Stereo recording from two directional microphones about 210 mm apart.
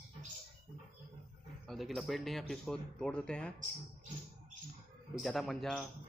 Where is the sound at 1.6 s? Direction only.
Centre (ahead or behind).